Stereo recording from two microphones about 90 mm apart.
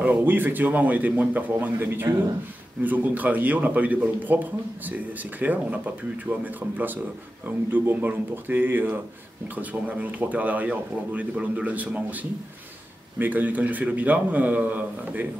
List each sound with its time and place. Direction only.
0.0 s a man's voice: 20° right (ahead or behind)